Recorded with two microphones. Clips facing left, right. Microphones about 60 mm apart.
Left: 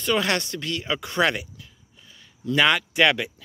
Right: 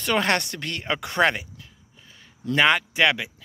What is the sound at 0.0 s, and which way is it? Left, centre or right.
Speech, right.